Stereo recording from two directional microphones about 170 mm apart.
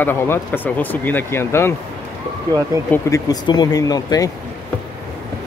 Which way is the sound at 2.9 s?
20° left (ahead or behind).